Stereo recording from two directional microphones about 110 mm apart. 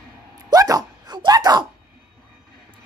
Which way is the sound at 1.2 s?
40° right (ahead or behind).